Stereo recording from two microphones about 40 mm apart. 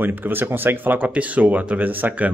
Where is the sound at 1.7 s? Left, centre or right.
Right.